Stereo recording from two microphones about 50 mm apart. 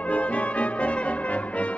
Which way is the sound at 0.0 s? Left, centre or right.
Left.